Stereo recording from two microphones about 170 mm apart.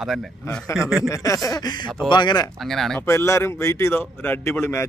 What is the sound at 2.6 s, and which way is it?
Speech, centre (ahead or behind).